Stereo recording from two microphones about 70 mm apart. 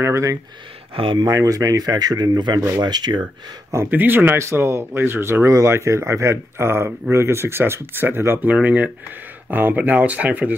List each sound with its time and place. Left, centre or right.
0.0 s speech: right
3.9 s speech: right
4.4 s speech: right
8.4 s speech: right